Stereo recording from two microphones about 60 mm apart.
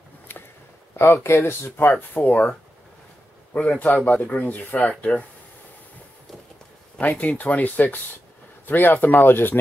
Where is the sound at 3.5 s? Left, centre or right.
Left.